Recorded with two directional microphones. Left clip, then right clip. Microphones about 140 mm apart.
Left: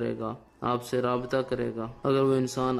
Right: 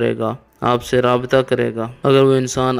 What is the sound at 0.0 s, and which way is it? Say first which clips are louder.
Speech: right 13 dB; 35° right (ahead or behind).